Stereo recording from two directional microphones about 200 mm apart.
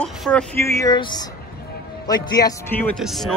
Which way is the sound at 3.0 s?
Centre (ahead or behind).